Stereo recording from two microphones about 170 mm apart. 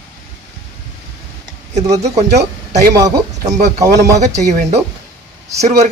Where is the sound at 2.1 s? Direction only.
40° right (ahead or behind).